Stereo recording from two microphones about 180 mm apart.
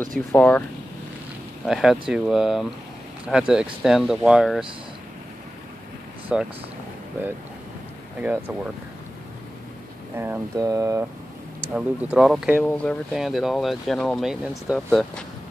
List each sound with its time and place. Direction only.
0.3 s speech: 10° left (ahead or behind)
1.7 s speech: 5° right (ahead or behind)
6.3 s speech: 5° right (ahead or behind)
8.2 s speech: 10° right (ahead or behind)
10.1 s speech: 15° right (ahead or behind)
11.7 s speech: 5° right (ahead or behind)
12.6 s speech: 5° left (ahead or behind)